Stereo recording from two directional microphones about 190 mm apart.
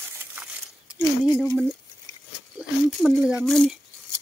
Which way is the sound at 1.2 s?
20° left (ahead or behind).